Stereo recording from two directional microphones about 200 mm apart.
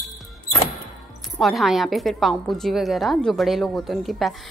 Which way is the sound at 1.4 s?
Centre (ahead or behind).